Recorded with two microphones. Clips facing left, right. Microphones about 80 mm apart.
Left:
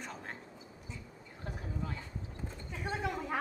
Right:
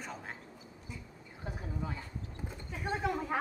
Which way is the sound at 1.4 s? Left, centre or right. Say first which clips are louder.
Right 1 dB; centre.